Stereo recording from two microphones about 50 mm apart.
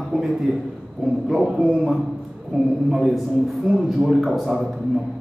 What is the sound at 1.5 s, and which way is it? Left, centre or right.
Speech, right.